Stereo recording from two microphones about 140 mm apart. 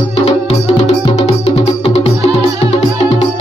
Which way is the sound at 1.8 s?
50° left (ahead or behind).